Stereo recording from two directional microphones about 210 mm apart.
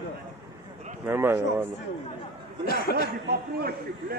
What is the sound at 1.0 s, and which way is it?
Speech, 10° right (ahead or behind).